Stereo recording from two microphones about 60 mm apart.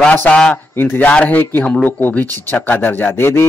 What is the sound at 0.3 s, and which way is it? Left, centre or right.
Speech, centre.